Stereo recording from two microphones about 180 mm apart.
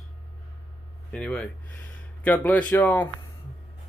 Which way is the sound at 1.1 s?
5° left (ahead or behind).